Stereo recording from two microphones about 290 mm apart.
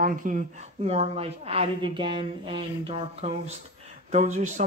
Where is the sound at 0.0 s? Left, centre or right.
Right.